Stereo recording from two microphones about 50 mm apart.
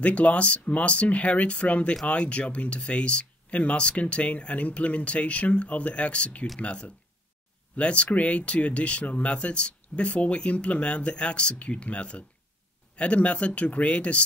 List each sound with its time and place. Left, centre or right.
0.0 s speech: left